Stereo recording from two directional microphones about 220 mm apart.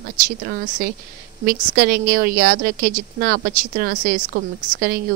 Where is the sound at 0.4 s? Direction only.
40° right (ahead or behind).